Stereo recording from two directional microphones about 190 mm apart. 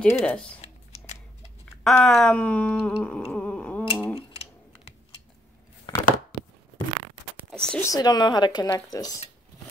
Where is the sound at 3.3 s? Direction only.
10° left (ahead or behind).